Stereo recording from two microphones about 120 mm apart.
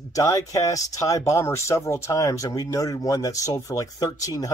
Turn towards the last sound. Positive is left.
turn(degrees=30)  # may be behind; listen again after turning